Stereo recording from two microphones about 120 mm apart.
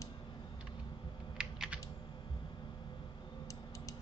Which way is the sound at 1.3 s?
5° right (ahead or behind).